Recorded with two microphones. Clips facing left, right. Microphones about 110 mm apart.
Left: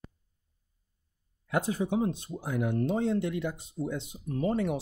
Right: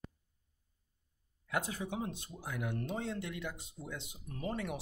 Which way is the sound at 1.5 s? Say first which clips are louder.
Left 9 dB; 30° left (ahead or behind).